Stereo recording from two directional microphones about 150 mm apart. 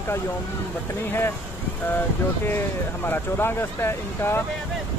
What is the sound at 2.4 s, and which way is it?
Speech, 15° left (ahead or behind).